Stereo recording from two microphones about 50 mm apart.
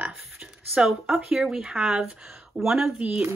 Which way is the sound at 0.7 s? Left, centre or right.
Centre.